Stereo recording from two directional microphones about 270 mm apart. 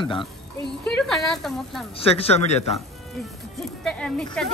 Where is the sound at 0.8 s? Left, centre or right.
Centre.